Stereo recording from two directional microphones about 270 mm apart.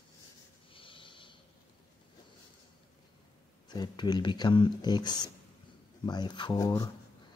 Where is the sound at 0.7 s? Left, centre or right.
Centre.